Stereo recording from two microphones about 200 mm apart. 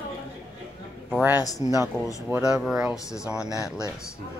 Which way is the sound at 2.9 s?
15° left (ahead or behind).